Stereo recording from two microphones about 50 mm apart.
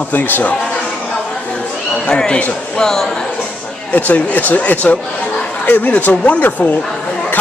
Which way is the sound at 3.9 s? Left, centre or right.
Left.